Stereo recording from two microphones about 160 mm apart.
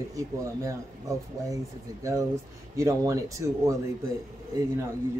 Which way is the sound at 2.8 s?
20° right (ahead or behind).